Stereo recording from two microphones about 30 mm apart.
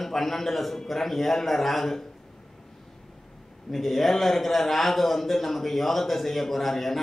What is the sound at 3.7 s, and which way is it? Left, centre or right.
A man's voice, centre.